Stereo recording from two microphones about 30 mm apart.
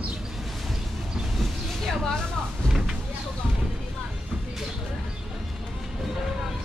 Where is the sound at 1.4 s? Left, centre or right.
Centre.